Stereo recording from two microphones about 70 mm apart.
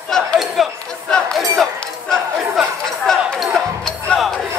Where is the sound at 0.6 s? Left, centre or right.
Centre.